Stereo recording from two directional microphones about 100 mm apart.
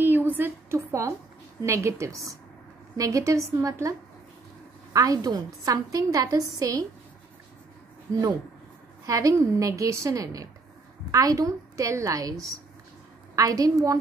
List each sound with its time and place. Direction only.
0.0 s a sound: 20° right (ahead or behind)
1.6 s a woman's voice: 30° right (ahead or behind)
4.9 s a woman's voice: 35° right (ahead or behind)
9.0 s a woman's voice: 35° right (ahead or behind)